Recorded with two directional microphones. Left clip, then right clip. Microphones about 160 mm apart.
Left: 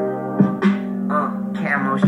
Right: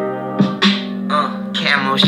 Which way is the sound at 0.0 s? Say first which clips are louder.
Right 1 dB; 20° right (ahead or behind).